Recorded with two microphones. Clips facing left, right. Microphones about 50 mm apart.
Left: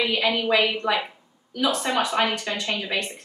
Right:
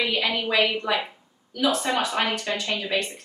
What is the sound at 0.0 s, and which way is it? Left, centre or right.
A woman's voice, centre.